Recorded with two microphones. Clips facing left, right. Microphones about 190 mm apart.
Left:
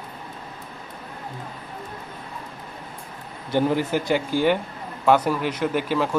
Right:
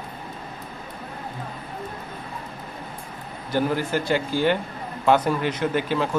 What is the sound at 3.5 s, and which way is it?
A man's voice, 20° left (ahead or behind).